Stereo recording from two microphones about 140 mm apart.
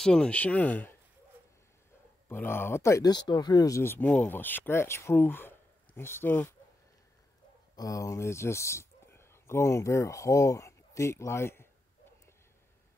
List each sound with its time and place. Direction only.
0.0 s speech: 5° left (ahead or behind)
2.2 s speech: 15° left (ahead or behind)
4.0 s speech: 5° left (ahead or behind)
7.7 s speech: 25° left (ahead or behind)